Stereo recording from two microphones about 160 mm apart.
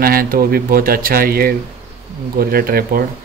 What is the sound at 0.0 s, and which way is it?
Speech, 65° right (ahead or behind).